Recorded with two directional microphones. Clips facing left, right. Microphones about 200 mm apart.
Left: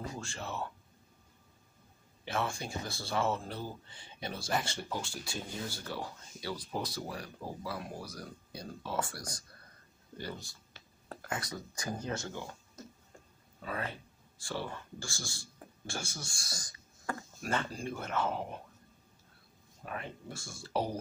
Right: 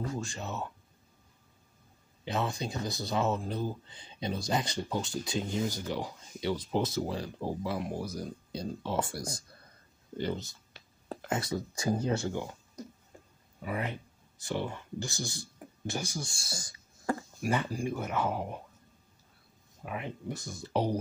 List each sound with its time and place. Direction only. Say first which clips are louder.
0.2 s speech: right 2 dB; 20° right (ahead or behind)
2.2 s speech: right 3 dB; 20° right (ahead or behind)
12.2 s speech: right 7 dB; 15° right (ahead or behind)
16.3 s a sound: right 4 dB; 25° right (ahead or behind)
17.4 s speech: right 2 dB; 15° right (ahead or behind)
19.8 s speech: right 4 dB; 15° right (ahead or behind)